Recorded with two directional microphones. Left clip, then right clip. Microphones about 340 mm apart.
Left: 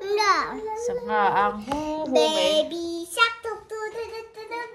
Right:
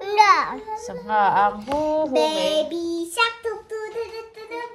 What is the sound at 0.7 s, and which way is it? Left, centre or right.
Speech, centre.